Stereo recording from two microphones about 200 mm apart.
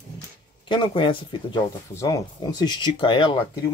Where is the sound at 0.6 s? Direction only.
25° left (ahead or behind).